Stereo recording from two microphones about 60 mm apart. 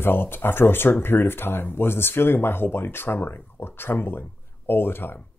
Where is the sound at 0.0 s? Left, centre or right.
Left.